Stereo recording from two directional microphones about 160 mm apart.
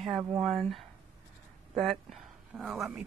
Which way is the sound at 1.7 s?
Centre (ahead or behind).